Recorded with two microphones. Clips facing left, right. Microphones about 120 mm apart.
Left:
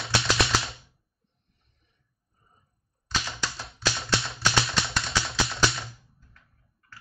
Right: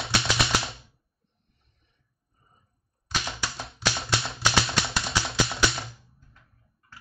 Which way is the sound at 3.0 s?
10° right (ahead or behind).